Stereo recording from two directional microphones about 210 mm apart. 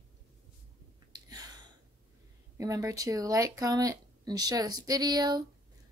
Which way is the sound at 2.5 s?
15° right (ahead or behind).